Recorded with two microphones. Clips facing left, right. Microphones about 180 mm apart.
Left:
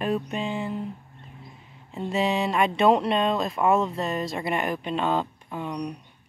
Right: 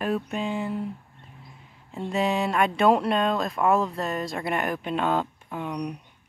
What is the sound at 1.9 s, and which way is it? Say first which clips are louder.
Speech: even; centre (ahead or behind).